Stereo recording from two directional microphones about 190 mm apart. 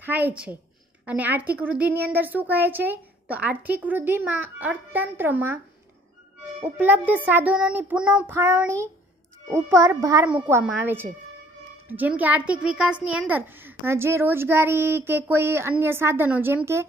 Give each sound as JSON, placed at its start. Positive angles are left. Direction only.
{"t": 0.0, "sound": "a woman's voice", "side_deg": -10}
{"t": 6.8, "sound": "a woman's voice", "side_deg": -10}